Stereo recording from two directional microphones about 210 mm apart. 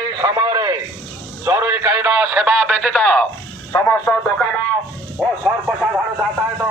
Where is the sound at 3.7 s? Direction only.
15° left (ahead or behind).